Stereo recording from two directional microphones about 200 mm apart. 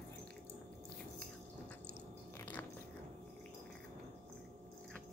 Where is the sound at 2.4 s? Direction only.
10° left (ahead or behind).